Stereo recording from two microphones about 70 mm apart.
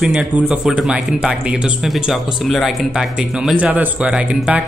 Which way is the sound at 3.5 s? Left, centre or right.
Right.